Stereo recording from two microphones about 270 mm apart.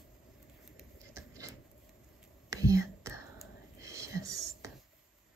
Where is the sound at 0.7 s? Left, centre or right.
Centre.